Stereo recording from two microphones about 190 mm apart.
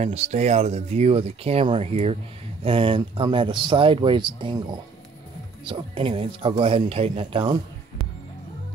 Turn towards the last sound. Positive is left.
turn(degrees=-25)  # may be behind; listen again after turning